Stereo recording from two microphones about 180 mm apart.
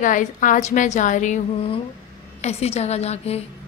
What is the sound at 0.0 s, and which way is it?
A woman's voice, 45° left (ahead or behind).